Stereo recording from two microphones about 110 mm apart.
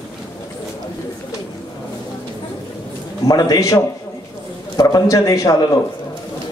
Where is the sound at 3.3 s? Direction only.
35° left (ahead or behind).